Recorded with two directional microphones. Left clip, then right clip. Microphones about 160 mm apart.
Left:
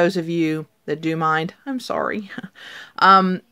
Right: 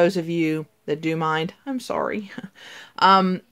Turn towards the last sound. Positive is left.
turn(degrees=20)  # may be behind; listen again after turning